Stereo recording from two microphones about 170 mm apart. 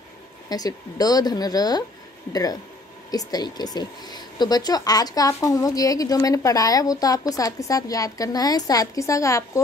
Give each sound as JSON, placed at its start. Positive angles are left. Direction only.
{"t": 0.5, "sound": "a woman's voice", "side_deg": 20}
{"t": 3.1, "sound": "a woman's voice", "side_deg": 20}